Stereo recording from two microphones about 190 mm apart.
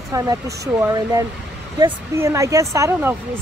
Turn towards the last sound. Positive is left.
turn(degrees=-15)  # may be behind; listen again after turning